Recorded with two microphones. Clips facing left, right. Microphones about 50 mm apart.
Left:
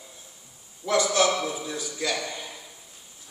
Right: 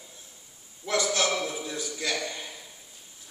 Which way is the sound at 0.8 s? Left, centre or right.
Left.